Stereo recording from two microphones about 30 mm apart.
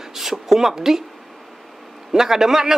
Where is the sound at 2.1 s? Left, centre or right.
Centre.